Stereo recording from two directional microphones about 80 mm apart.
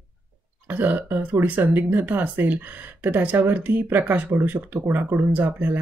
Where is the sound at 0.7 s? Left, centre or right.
Right.